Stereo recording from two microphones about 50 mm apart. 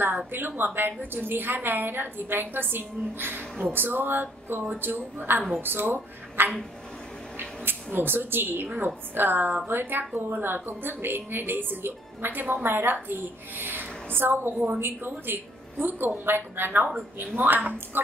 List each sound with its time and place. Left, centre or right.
0.6 s a woman's voice: right